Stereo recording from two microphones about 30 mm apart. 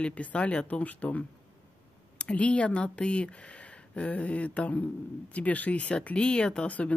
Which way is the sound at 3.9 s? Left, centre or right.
Left.